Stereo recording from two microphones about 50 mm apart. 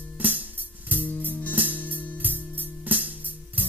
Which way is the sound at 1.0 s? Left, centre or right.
Left.